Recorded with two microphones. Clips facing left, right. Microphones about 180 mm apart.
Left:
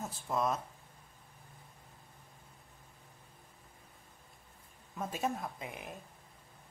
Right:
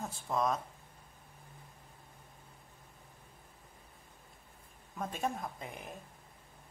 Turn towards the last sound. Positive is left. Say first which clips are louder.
# even
turn(degrees=0)  # may be behind; listen again after turning